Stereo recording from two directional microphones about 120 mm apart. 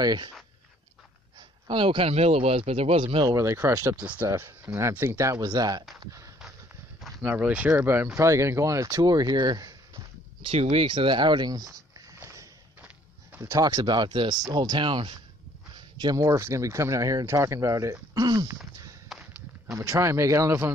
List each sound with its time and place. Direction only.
0.0 s speech: 35° right (ahead or behind)
1.7 s speech: 45° right (ahead or behind)
3.3 s speech: 25° right (ahead or behind)
7.2 s speech: 15° right (ahead or behind); by 10.0 s 30° right (ahead or behind)
10.4 s speech: 55° right (ahead or behind); by 11.6 s 35° right (ahead or behind)
12.2 s a sound: 25° right (ahead or behind)
13.4 s speech: 30° right (ahead or behind); by 15.1 s 45° right (ahead or behind)
16.0 s speech: 30° right (ahead or behind)
18.1 s speech: 35° right (ahead or behind)
19.1 s walk: centre (ahead or behind)
19.7 s speech: 25° right (ahead or behind)